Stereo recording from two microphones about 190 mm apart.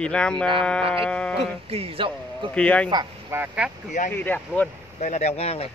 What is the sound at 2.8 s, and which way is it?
Speech, 20° right (ahead or behind).